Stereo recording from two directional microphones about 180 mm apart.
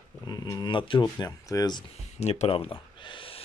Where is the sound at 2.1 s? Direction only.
35° left (ahead or behind).